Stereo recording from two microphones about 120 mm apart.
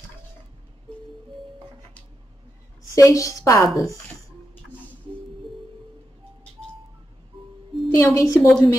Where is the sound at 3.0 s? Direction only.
25° left (ahead or behind).